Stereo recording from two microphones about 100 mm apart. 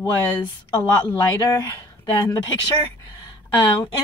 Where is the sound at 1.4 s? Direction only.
30° left (ahead or behind).